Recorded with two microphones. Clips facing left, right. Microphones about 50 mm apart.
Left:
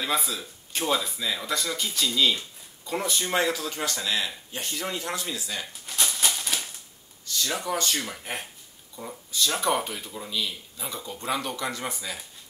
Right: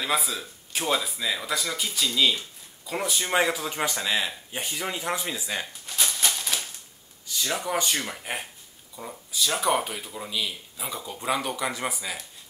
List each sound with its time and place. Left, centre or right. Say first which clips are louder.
0.0 s speech: right 1 dB; centre
3.3 s speech: right 3 dB; centre
5.9 s a sound: left 1 dB; centre
7.2 s speech: even; centre